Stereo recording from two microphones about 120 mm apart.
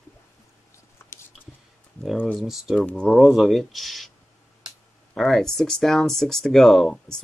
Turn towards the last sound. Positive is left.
turn(degrees=5)  # may be behind; listen again after turning